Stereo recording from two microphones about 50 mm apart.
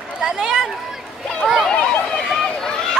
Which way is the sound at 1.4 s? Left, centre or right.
Centre.